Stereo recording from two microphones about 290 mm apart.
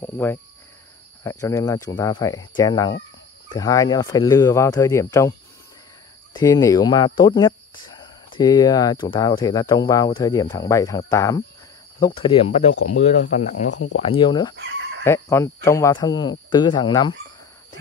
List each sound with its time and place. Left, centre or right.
0.0 s speech: centre
6.3 s speech: centre
14.6 s neigh: right
15.0 s speech: centre